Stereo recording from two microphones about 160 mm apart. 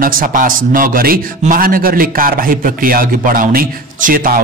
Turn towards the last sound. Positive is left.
turn(degrees=-60)  # may be behind; listen again after turning